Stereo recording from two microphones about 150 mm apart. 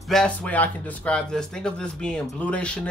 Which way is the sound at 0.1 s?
5° left (ahead or behind).